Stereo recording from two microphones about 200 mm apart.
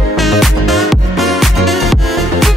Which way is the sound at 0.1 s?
Centre (ahead or behind).